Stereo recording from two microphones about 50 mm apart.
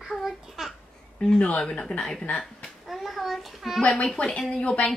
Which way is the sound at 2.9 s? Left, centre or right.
Centre.